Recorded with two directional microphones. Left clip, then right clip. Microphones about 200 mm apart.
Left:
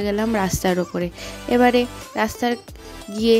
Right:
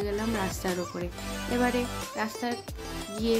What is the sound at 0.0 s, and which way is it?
Speech, 50° left (ahead or behind).